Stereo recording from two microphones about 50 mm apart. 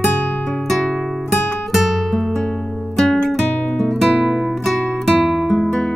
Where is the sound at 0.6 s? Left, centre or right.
Centre.